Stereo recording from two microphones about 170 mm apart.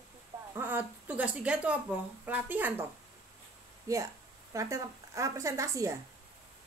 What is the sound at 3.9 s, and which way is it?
A woman's voice, 20° right (ahead or behind).